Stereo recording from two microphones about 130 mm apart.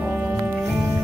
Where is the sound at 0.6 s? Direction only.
Centre (ahead or behind).